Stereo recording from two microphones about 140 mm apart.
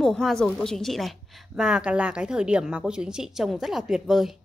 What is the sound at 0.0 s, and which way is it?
A woman's voice, 5° left (ahead or behind).